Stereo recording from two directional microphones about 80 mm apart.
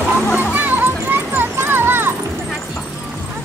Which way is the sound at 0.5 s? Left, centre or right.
Right.